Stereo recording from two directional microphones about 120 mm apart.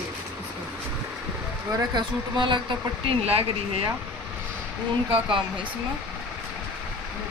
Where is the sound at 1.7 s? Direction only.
40° right (ahead or behind).